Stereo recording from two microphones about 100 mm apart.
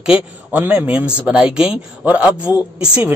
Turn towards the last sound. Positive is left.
turn(degrees=-10)  # may be behind; listen again after turning